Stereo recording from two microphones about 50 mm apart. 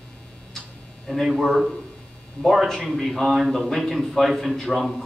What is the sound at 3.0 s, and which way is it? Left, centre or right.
A man's voice, centre.